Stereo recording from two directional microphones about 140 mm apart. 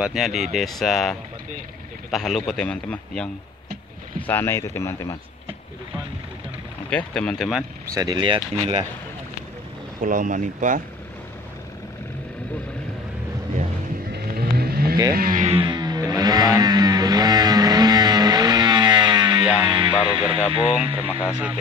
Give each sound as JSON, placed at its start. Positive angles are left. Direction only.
{"t": 0.0, "sound": "a man's voice", "side_deg": 0}
{"t": 4.3, "sound": "a man's voice", "side_deg": 15}
{"t": 6.9, "sound": "a man's voice", "side_deg": 5}
{"t": 7.8, "sound": "speech", "side_deg": -25}
{"t": 10.0, "sound": "speech", "side_deg": -70}
{"t": 14.3, "sound": "vehicle", "side_deg": -90}
{"t": 15.1, "sound": "speech", "side_deg": -90}
{"t": 15.4, "sound": "music", "side_deg": -45}
{"t": 15.7, "sound": "music", "side_deg": -30}
{"t": 20.7, "sound": "speech", "side_deg": -10}